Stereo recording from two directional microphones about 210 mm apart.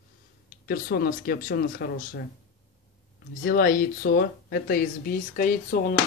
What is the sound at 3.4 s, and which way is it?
Speech, 40° left (ahead or behind).